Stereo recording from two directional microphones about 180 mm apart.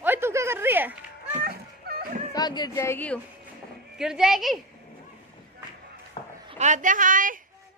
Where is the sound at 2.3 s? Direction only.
20° left (ahead or behind).